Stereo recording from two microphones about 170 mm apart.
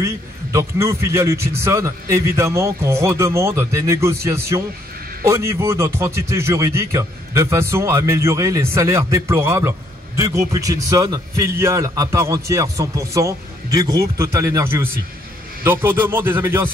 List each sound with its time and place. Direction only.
0.0 s a man's voice: 15° right (ahead or behind)